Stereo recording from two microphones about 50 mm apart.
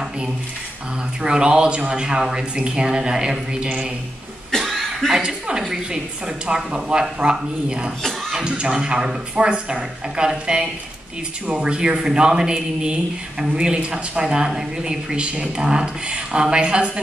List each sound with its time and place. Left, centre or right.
1.2 s a man's voice: centre
4.5 s cough: centre
5.1 s a man's voice: centre